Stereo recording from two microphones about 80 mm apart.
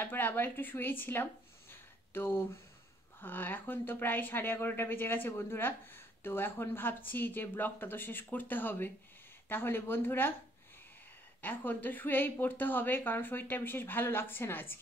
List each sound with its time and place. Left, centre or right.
0.0 s speech: left
11.4 s speech: left